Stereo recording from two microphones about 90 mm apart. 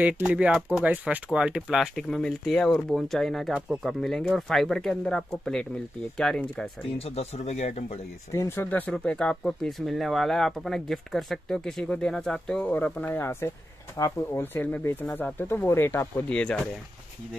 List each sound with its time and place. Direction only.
0.0 s speech: 15° right (ahead or behind); by 3.5 s 5° left (ahead or behind)
3.5 s speech: 15° right (ahead or behind)
3.8 s speech: centre (ahead or behind)
8.3 s speech: 30° left (ahead or behind)
8.6 s speech: 15° left (ahead or behind)
16.3 s speech: 10° left (ahead or behind)